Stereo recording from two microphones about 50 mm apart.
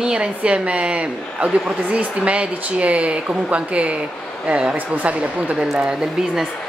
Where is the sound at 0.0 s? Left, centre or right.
Centre.